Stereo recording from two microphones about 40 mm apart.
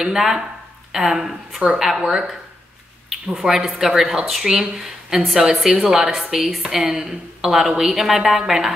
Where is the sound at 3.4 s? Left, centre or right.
Centre.